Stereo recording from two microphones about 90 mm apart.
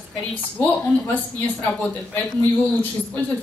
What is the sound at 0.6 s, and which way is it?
Speech, 20° left (ahead or behind).